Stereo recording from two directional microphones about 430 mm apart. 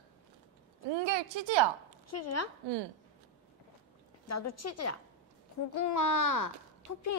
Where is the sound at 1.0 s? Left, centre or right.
Right.